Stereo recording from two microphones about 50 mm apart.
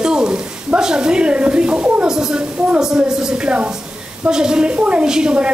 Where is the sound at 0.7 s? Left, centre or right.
Centre.